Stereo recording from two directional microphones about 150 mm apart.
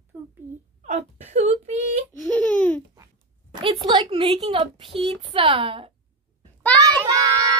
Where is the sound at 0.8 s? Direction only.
50° right (ahead or behind).